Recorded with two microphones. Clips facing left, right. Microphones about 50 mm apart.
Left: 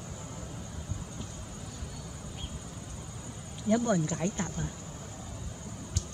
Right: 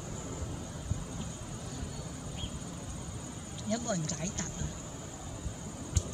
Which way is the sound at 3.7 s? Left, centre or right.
Centre.